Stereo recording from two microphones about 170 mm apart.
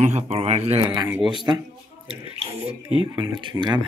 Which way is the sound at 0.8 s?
25° right (ahead or behind).